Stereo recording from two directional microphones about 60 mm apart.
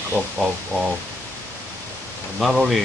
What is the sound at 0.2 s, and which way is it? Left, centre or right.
Speech, right.